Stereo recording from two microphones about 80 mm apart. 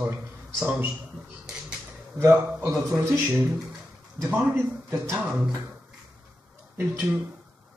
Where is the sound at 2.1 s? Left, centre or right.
Right.